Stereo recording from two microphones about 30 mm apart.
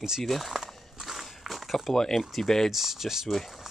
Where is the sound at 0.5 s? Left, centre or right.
Centre.